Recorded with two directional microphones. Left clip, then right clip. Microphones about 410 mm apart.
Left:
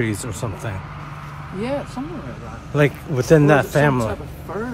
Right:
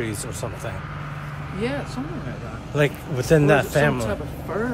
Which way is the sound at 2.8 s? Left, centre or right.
Centre.